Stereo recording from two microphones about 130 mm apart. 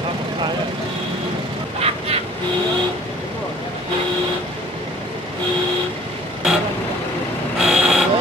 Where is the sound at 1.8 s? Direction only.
50° right (ahead or behind).